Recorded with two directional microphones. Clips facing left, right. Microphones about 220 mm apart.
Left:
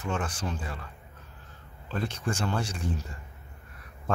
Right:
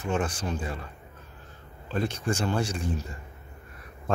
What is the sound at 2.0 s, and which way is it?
Speech, 15° right (ahead or behind).